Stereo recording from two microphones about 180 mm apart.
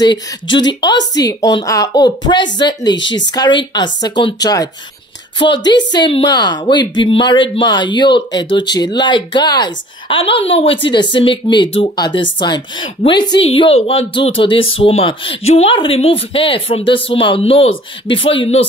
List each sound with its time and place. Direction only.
0.0 s a woman's voice: 25° left (ahead or behind)